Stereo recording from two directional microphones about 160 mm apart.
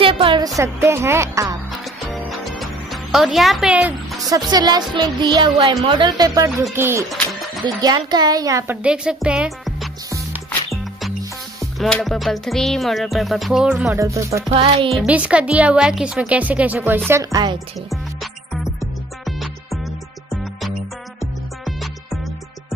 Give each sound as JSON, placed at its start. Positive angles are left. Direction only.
{"t": 0.0, "sound": "speech", "side_deg": -35}
{"t": 0.6, "sound": "speech", "side_deg": -15}
{"t": 2.2, "sound": "music", "side_deg": 0}
{"t": 4.5, "sound": "music", "side_deg": -25}
{"t": 6.7, "sound": "speech", "side_deg": -15}
{"t": 7.6, "sound": "music", "side_deg": -25}
{"t": 8.8, "sound": "music", "side_deg": -5}
{"t": 13.9, "sound": "music", "side_deg": -20}
{"t": 14.5, "sound": "music", "side_deg": -35}
{"t": 14.9, "sound": "speech", "side_deg": -5}
{"t": 17.1, "sound": "music", "side_deg": -20}
{"t": 17.8, "sound": "music", "side_deg": 0}